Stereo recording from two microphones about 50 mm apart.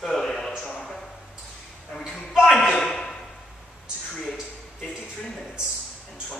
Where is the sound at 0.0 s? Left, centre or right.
Centre.